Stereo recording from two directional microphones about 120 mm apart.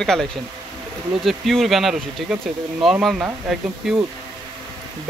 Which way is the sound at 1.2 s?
Centre (ahead or behind).